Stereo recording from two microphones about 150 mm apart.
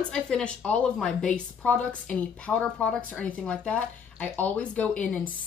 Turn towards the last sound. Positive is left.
turn(degrees=10)  # may be behind; listen again after turning